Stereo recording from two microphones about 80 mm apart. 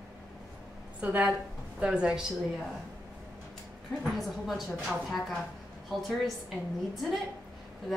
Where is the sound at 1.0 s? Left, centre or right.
Centre.